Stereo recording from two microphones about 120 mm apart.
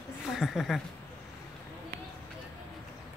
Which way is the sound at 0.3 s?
Centre (ahead or behind).